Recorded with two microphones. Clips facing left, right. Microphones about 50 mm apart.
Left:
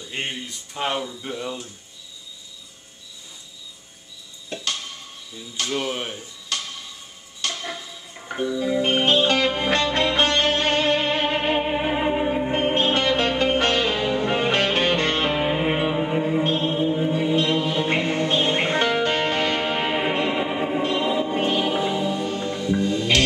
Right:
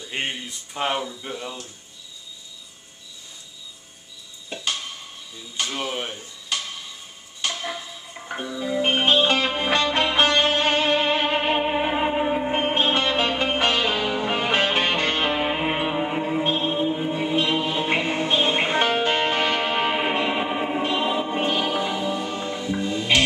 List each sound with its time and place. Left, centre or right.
0.1 s speech: centre
4.5 s tick-tock: centre
5.6 s speech: centre
7.4 s dishes: centre
8.2 s music: centre